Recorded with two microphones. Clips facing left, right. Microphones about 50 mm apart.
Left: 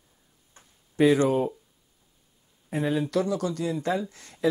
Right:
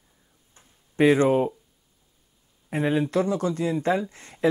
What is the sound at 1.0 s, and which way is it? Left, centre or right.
Speech, right.